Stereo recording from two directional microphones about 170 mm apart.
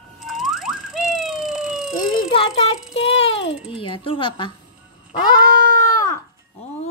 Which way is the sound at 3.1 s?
35° left (ahead or behind).